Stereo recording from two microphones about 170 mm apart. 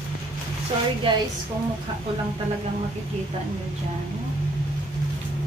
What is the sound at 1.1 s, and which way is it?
Speech, 30° right (ahead or behind).